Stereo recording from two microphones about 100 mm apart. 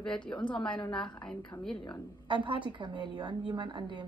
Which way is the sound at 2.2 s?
55° right (ahead or behind).